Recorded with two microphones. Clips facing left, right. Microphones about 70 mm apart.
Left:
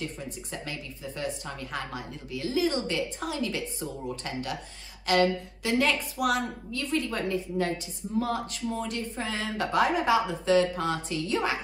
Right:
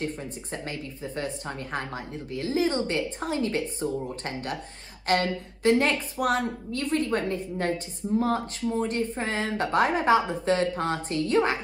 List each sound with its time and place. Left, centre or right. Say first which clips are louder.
0.0 s a woman's voice: right 4 dB; right
5.1 s a sound: left 1 dB; right
5.6 s a woman's voice: right 4 dB; right